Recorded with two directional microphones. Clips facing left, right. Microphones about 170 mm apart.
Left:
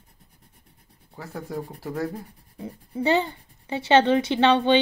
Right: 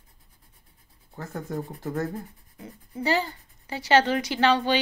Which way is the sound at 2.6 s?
25° left (ahead or behind).